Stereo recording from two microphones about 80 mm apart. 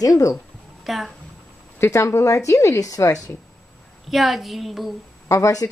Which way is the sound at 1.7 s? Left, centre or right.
Left.